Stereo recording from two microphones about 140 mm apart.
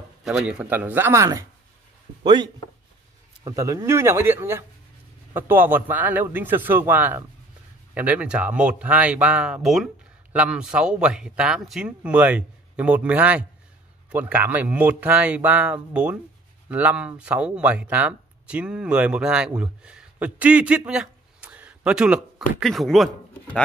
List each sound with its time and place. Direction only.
0.2 s speech: 5° right (ahead or behind)
2.2 s a man's voice: 30° right (ahead or behind); by 23.0 s centre (ahead or behind)